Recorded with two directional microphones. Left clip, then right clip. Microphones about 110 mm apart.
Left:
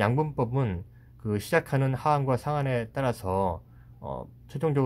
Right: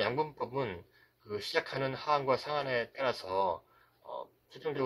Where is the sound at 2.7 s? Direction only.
20° left (ahead or behind).